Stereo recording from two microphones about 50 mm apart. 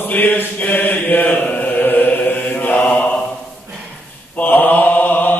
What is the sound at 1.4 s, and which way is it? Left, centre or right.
Chant, left.